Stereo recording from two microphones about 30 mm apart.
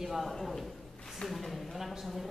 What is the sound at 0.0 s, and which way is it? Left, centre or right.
Speech, centre.